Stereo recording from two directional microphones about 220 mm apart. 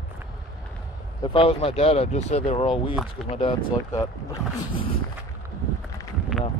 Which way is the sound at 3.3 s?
25° left (ahead or behind).